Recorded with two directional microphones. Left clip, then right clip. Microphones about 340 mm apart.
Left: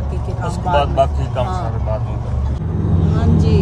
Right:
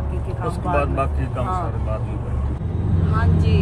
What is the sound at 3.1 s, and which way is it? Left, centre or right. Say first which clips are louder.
Speech: left 4 dB; centre.